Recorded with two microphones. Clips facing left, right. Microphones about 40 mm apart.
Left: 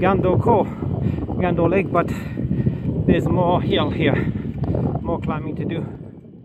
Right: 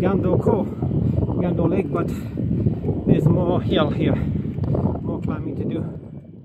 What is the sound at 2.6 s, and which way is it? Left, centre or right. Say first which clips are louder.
Vehicle: even; left.